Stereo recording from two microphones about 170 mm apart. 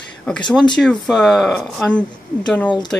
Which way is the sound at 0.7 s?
5° left (ahead or behind).